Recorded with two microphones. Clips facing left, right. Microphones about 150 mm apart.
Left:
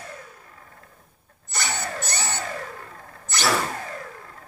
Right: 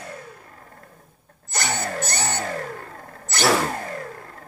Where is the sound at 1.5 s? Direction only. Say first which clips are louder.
Right 3 dB; 45° right (ahead or behind).